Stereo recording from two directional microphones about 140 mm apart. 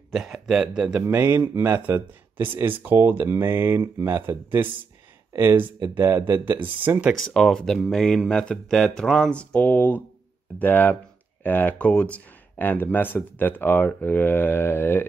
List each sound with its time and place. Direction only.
0.1 s speech: 5° right (ahead or behind)
7.2 s speech: centre (ahead or behind)